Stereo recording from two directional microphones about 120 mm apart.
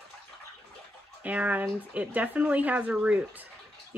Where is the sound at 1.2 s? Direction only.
10° right (ahead or behind).